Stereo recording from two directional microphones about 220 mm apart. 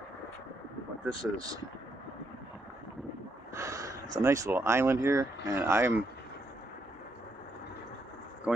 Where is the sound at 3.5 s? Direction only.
15° right (ahead or behind).